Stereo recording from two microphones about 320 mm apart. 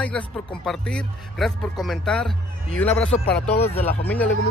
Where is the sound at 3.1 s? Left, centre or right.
Left.